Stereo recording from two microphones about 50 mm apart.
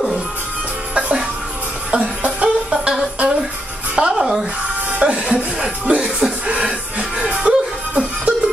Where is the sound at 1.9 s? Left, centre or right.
Right.